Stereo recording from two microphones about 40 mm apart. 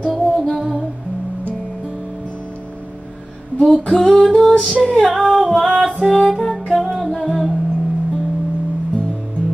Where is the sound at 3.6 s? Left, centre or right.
Centre.